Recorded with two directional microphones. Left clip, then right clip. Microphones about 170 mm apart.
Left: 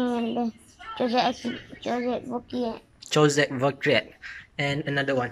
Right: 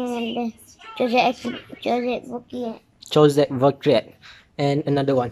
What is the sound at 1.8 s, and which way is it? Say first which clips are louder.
Speech: right 5 dB; 25° right (ahead or behind).